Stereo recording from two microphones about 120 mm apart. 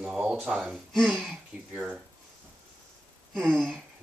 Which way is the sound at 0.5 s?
Centre (ahead or behind).